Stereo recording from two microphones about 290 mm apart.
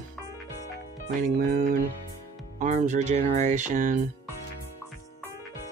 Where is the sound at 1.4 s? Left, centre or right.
Right.